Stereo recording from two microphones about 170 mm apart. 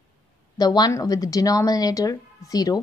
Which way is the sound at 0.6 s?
25° left (ahead or behind).